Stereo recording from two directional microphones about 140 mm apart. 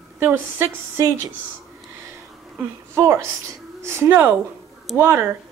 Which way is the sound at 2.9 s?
20° right (ahead or behind).